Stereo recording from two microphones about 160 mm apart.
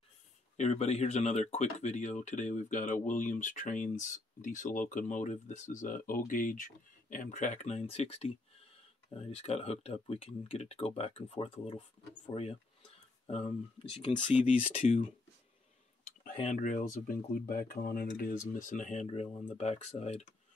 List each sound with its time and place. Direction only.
0.6 s speech: 45° left (ahead or behind)
16.5 s speech: 55° left (ahead or behind)
18.5 s speech: 55° left (ahead or behind)